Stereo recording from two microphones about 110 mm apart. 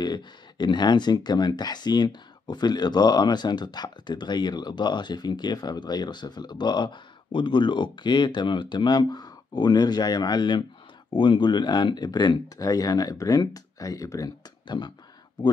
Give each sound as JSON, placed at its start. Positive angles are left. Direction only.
{"t": 0.0, "sound": "speech", "side_deg": 40}